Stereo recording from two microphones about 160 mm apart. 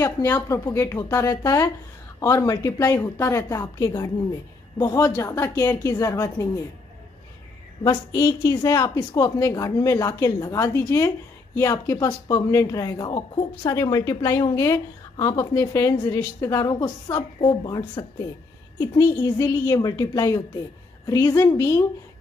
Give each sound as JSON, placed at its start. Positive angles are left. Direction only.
{"t": 0.0, "sound": "speech", "side_deg": 15}
{"t": 7.8, "sound": "speech", "side_deg": 20}